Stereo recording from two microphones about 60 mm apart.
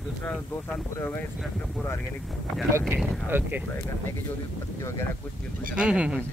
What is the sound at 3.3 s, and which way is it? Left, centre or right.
Speech, right.